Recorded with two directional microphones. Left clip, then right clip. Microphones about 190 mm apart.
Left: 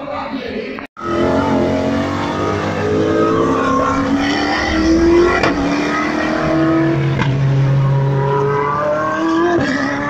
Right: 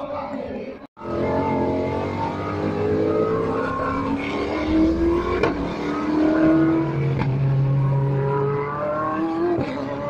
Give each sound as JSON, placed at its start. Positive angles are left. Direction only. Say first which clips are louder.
{"t": 1.2, "sound": "vehicle", "louder": "left 6 dB", "side_deg": -30}
{"t": 3.6, "sound": "vehicle", "louder": "left 9 dB", "side_deg": -15}
{"t": 4.7, "sound": "vehicle", "louder": "left 7 dB", "side_deg": -30}
{"t": 9.2, "sound": "vehicle", "louder": "left 8 dB", "side_deg": -15}